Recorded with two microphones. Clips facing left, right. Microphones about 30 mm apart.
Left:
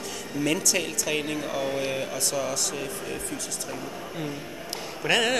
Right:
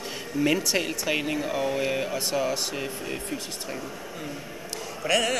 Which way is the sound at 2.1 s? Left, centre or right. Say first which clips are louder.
Right 2 dB; right.